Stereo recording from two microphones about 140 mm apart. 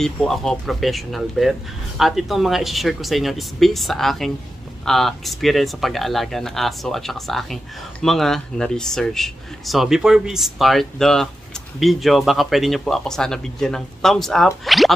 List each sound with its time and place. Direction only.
0.0 s speech: centre (ahead or behind)